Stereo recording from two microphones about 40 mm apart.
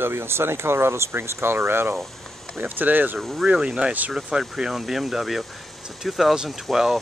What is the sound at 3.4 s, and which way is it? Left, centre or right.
Speech, right.